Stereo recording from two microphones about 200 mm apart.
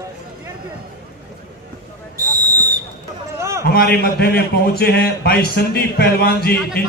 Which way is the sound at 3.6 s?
50° left (ahead or behind).